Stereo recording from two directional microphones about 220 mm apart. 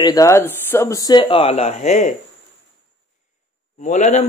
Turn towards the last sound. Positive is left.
turn(degrees=35)  # may be behind; listen again after turning